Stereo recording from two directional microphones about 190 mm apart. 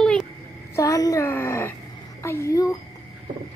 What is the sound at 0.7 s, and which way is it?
A woman's voice, 15° left (ahead or behind).